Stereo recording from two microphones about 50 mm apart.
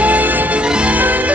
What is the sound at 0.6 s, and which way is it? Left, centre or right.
Music, right.